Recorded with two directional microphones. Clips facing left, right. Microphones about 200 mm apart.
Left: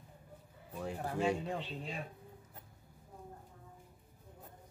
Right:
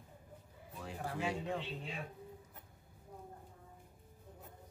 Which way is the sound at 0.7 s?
45° left (ahead or behind).